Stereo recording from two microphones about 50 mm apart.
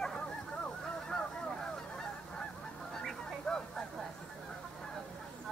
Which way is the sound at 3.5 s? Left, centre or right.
Centre.